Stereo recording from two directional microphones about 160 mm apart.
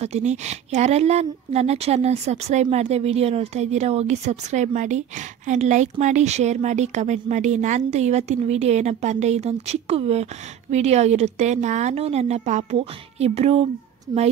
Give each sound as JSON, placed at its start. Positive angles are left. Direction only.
{"t": 0.0, "sound": "speech", "side_deg": -45}